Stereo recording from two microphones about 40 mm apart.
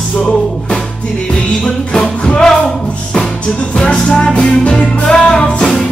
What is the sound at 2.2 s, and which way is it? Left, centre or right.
Music, centre.